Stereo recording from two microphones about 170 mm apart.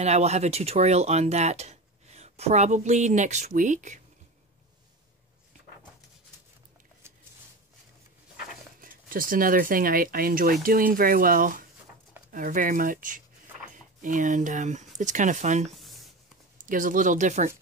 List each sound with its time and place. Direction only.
0.0 s speech: 40° right (ahead or behind)
8.8 s speech: 55° right (ahead or behind)
15.7 s a sound: centre (ahead or behind)
16.6 s speech: 50° right (ahead or behind)